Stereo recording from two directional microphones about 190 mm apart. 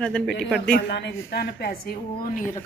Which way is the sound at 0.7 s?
60° left (ahead or behind).